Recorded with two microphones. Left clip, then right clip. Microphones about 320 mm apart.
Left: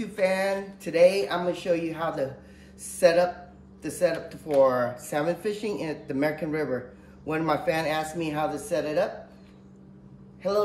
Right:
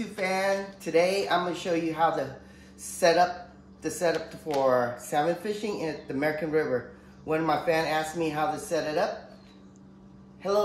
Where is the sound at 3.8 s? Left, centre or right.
Centre.